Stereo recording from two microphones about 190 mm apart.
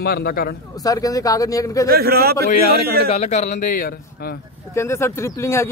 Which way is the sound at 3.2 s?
40° left (ahead or behind).